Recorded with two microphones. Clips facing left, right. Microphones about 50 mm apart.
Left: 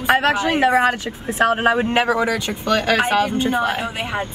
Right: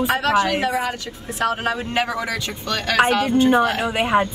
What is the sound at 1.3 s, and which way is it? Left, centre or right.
Speech, left.